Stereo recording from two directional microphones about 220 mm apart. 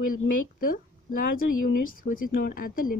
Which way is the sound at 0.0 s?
40° left (ahead or behind).